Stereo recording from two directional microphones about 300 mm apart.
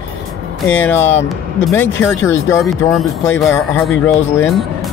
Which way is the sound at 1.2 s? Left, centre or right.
Centre.